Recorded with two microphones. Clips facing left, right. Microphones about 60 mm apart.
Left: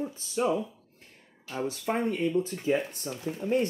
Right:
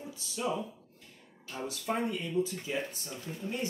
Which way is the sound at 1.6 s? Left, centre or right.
Left.